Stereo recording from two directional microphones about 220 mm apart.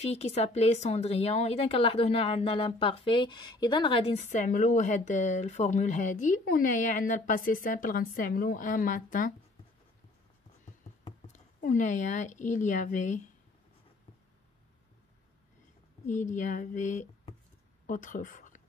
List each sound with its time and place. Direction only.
0.0 s speech: 30° left (ahead or behind)
11.6 s speech: 35° left (ahead or behind)
16.1 s speech: 35° left (ahead or behind)